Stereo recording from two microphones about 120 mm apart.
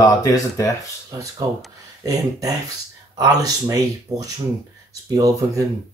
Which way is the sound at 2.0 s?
30° right (ahead or behind).